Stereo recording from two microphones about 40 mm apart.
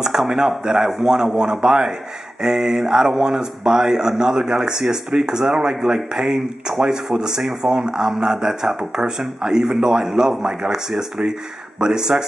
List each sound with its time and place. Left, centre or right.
0.0 s a man's voice: centre
9.8 s a man's voice: right